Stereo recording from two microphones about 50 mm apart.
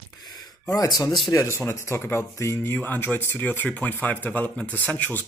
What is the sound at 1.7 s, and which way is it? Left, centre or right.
Speech, left.